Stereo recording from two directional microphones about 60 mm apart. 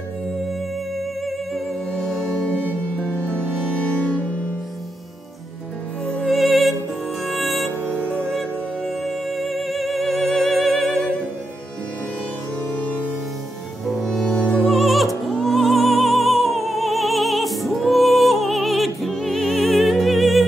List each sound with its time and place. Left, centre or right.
1.9 s music: centre
6.2 s music: centre
7.9 s music: left
8.3 s music: centre
12.7 s music: left
13.8 s music: centre